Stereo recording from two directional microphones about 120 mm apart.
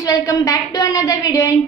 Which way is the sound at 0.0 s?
30° left (ahead or behind).